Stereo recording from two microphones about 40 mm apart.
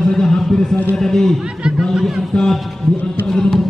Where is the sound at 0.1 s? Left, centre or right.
Centre.